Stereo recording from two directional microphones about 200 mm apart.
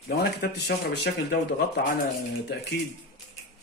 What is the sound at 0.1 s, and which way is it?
A man's voice, 50° left (ahead or behind).